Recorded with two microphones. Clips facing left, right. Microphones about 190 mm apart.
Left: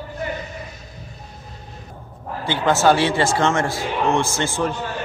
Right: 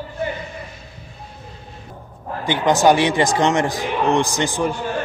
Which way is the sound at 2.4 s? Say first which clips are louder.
Right 2 dB; 15° right (ahead or behind).